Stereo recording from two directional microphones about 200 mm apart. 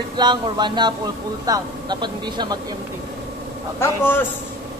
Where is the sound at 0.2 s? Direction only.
20° right (ahead or behind).